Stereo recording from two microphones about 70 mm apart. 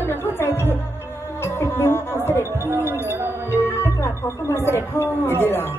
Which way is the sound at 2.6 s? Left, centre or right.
Right.